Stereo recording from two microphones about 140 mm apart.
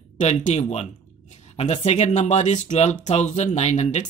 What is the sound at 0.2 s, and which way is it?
Speech, 60° left (ahead or behind).